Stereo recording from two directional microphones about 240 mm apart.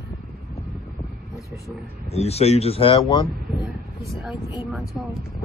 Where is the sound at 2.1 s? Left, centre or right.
Left.